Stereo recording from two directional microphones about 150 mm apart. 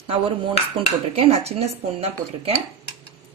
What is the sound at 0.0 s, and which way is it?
A woman's voice, 35° right (ahead or behind).